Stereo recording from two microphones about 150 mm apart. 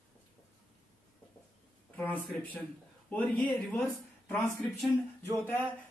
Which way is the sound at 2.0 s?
10° left (ahead or behind).